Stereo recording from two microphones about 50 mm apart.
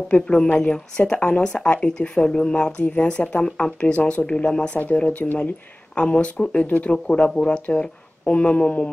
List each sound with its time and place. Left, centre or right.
0.1 s speech: centre
6.9 s speech: centre